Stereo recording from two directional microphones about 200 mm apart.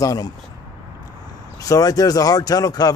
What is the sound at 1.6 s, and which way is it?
A man's voice, 15° left (ahead or behind).